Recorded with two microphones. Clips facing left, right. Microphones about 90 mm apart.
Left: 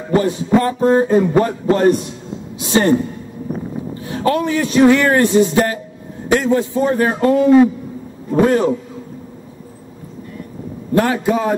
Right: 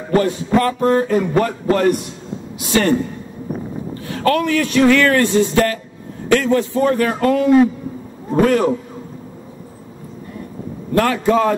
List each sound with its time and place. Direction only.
0.1 s a man's voice: 20° left (ahead or behind)
4.1 s a man's voice: 20° left (ahead or behind)
10.9 s a man's voice: 20° left (ahead or behind)